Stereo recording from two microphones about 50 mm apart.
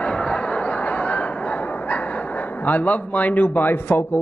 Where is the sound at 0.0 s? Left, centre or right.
Left.